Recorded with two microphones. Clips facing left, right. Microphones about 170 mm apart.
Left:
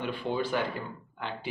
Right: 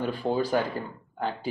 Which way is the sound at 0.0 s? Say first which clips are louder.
Right 4 dB; 40° right (ahead or behind).